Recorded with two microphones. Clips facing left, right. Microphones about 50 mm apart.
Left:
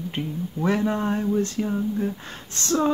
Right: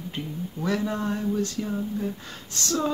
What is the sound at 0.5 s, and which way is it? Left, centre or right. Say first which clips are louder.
Speech: left 4 dB; left.